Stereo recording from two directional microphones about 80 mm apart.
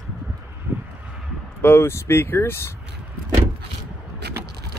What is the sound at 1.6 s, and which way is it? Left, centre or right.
Speech, left.